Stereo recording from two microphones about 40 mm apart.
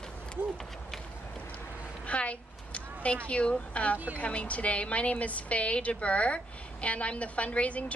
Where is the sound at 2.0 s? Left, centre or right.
Left.